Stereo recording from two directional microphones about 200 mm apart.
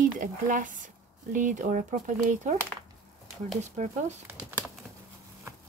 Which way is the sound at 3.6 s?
35° right (ahead or behind).